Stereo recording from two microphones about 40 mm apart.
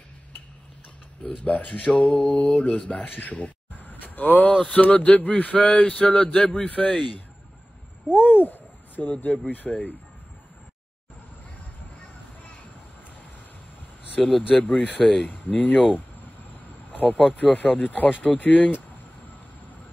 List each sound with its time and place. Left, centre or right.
1.2 s speech: left
2.7 s speech: left
3.1 s a sound: left
4.7 s speech: left
6.7 s speech: left
8.2 s owl: left
9.5 s speech: left
14.2 s speech: centre
14.5 s speech: left
17.3 s speech: left